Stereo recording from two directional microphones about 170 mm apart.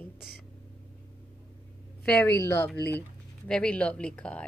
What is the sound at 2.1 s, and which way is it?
A woman's voice, 15° left (ahead or behind).